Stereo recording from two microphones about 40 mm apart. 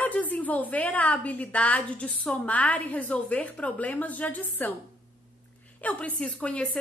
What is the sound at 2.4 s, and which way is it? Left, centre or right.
A woman's voice, left.